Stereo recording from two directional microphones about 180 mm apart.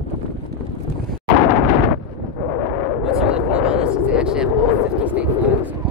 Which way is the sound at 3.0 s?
5° right (ahead or behind).